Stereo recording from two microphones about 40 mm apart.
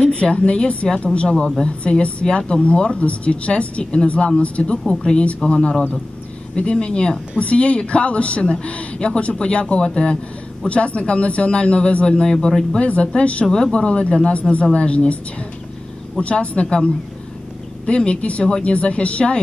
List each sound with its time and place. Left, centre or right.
0.0 s a woman's voice: left
5.4 s speech: centre
6.5 s speech: left
10.7 s speech: left; by 12.6 s centre
12.7 s a woman's voice: left
13.5 s a woman's voice: left
17.8 s a woman's voice: left